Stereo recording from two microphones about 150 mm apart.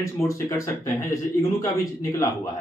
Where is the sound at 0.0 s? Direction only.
20° left (ahead or behind).